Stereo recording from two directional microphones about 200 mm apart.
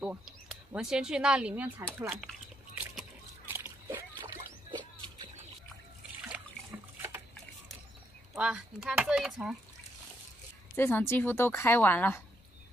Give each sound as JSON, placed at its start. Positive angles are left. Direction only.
{"t": 0.0, "sound": "speech", "side_deg": -5}
{"t": 2.8, "sound": "a sound", "side_deg": -10}
{"t": 4.6, "sound": "music", "side_deg": -25}
{"t": 6.3, "sound": "water", "side_deg": -5}
{"t": 8.4, "sound": "speech", "side_deg": -5}
{"t": 10.8, "sound": "a woman's voice", "side_deg": 10}